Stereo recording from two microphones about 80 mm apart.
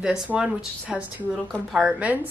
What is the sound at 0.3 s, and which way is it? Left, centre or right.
A woman's voice, centre.